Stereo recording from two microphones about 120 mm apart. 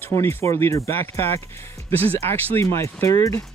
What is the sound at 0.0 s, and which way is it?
Speech, 20° left (ahead or behind).